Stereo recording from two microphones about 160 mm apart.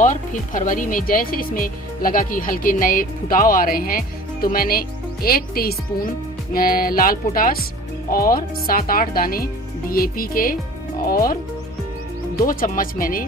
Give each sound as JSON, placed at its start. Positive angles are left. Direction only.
{"t": 0.0, "sound": "speech", "side_deg": 55}
{"t": 12.4, "sound": "speech", "side_deg": 60}